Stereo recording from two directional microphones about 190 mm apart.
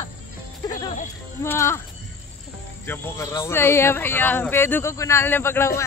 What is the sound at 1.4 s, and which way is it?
Speech, 15° left (ahead or behind).